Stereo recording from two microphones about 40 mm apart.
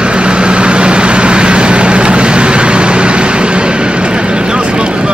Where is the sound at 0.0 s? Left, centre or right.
Right.